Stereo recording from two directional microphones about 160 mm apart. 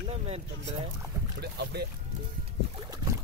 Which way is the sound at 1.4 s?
90° right.